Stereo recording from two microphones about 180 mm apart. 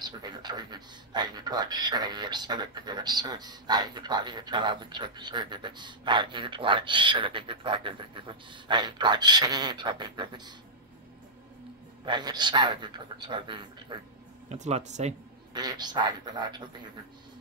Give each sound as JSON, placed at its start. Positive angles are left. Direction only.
{"t": 0.0, "sound": "speech", "side_deg": -25}
{"t": 12.0, "sound": "speech", "side_deg": -25}
{"t": 14.5, "sound": "speech", "side_deg": -40}
{"t": 15.5, "sound": "speech", "side_deg": -20}